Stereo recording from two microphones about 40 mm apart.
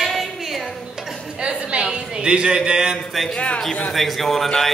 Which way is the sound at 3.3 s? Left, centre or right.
Left.